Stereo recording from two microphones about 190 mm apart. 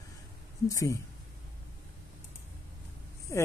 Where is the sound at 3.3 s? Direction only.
15° left (ahead or behind).